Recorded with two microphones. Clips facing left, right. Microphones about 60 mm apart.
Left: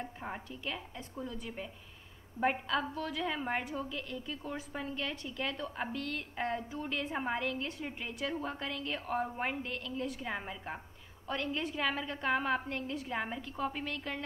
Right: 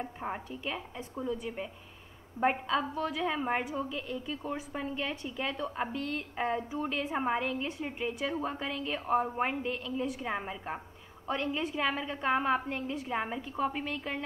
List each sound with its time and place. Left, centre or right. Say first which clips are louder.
0.0 s a woman's voice: right 4 dB; centre
2.4 s a woman's voice: right 3 dB; right
2.8 s a woman's voice: right 4 dB; centre